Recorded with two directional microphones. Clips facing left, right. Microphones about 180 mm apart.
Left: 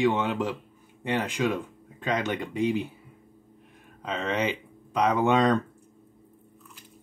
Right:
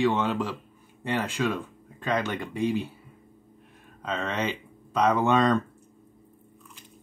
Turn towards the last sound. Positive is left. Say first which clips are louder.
# even
turn(degrees=15)  # may be behind; listen again after turning